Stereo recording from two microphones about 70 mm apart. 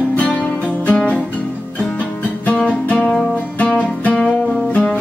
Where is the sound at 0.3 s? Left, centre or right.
Centre.